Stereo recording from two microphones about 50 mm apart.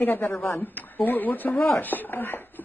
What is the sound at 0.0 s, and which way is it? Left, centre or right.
Speech, left.